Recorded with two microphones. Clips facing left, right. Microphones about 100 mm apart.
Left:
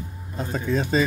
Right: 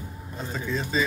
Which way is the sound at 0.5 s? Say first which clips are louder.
Left 5 dB; 50° left (ahead or behind).